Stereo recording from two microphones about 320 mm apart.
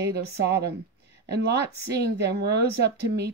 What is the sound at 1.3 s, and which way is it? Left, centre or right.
Speech, right.